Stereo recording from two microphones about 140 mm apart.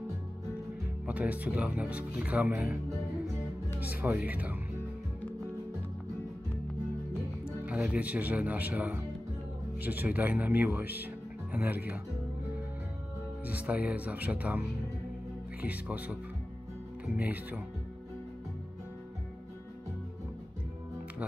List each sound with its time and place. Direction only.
1.0 s speech: 10° right (ahead or behind)
3.8 s speech: 15° right (ahead or behind)
7.6 s speech: 10° right (ahead or behind)
13.5 s speech: 10° right (ahead or behind)
15.6 s speech: 10° right (ahead or behind)
17.2 s speech: 10° right (ahead or behind)